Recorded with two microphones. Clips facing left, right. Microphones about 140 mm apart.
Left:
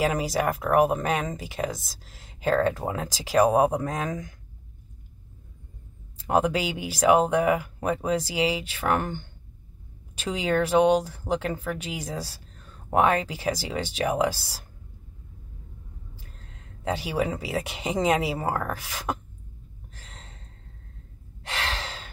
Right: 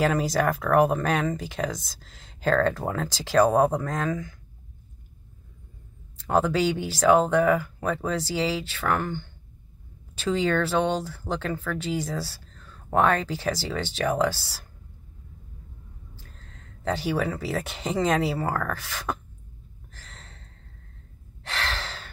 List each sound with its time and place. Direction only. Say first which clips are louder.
0.0 s speech: right 1 dB; 10° left (ahead or behind)
6.1 s speech: even; 10° left (ahead or behind)
16.8 s speech: right 1 dB; 10° left (ahead or behind)
21.5 s gasp: even; 10° left (ahead or behind)